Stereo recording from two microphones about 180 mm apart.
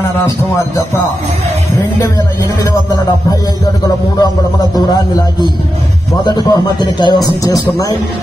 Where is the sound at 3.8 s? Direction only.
20° left (ahead or behind).